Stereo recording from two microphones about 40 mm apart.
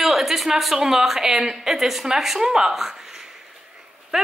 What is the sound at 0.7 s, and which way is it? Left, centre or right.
A woman's voice, centre.